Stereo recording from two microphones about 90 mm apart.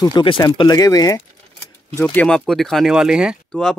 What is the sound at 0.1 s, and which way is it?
Speech, 70° left (ahead or behind).